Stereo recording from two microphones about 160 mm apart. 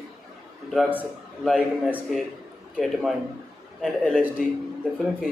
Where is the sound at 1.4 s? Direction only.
5° right (ahead or behind).